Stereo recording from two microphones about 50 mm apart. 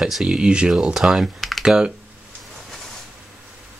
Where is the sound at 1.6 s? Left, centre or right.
Centre.